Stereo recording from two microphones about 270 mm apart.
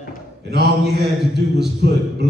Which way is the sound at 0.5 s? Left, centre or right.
Right.